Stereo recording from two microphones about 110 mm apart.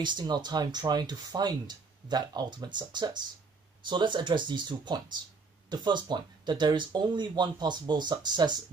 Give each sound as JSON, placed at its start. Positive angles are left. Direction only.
{"t": 0.0, "sound": "speech", "side_deg": -45}